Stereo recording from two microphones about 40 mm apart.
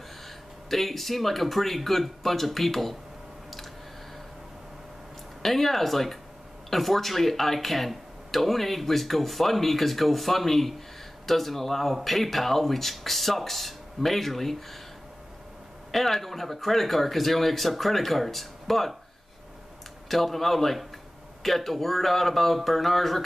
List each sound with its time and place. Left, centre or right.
0.7 s speech: centre
5.4 s speech: centre
15.9 s speech: centre
20.1 s speech: centre